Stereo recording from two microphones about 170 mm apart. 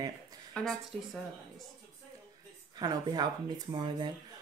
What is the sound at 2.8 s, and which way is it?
Speech, 25° right (ahead or behind).